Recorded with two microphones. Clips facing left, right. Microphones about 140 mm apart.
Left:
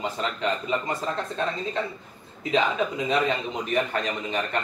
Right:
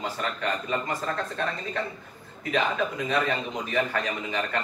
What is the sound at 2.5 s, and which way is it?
A man's voice, 20° left (ahead or behind).